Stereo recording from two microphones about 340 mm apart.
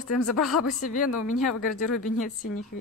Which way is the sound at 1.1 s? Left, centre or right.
Left.